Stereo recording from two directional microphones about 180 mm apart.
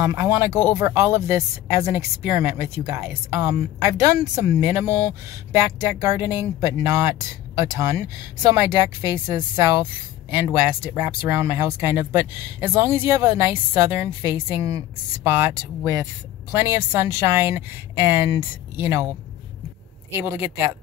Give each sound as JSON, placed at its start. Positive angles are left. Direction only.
{"t": 0.0, "sound": "speech", "side_deg": -15}
{"t": 20.1, "sound": "speech", "side_deg": -15}